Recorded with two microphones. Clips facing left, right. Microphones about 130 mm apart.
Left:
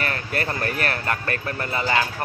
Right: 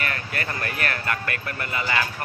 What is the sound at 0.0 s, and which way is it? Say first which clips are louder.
Speech: left 3 dB; 35° left (ahead or behind).